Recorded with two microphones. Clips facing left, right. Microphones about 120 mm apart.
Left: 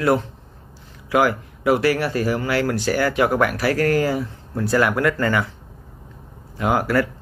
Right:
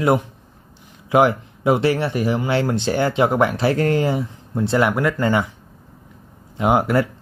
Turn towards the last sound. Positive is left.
turn(degrees=-20)  # may be behind; listen again after turning